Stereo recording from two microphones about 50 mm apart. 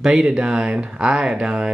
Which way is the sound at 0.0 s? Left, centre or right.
Centre.